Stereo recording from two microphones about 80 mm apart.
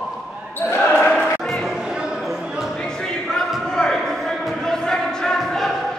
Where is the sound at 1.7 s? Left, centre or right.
Centre.